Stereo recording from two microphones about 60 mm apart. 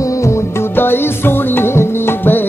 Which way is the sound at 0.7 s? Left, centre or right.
Left.